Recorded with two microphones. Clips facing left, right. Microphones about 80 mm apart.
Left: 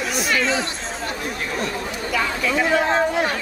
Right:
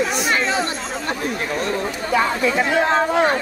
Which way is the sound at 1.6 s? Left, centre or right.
Right.